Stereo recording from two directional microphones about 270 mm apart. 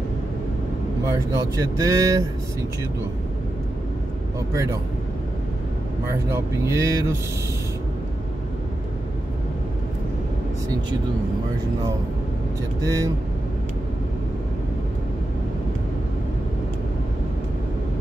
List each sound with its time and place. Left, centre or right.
1.0 s speech: centre
6.3 s speech: centre
12.8 s speech: centre